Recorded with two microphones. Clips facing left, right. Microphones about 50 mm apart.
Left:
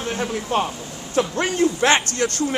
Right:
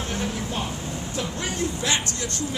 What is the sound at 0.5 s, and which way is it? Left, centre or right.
Speech, left.